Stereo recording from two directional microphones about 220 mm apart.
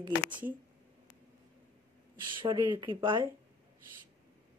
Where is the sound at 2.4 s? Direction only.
20° right (ahead or behind).